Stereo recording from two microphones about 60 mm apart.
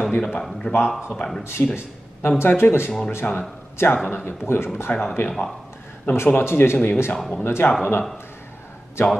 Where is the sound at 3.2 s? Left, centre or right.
Left.